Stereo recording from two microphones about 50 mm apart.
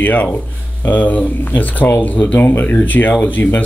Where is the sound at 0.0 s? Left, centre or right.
Left.